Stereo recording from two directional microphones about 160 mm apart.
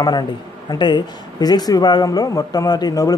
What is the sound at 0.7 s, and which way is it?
Speech, 30° left (ahead or behind).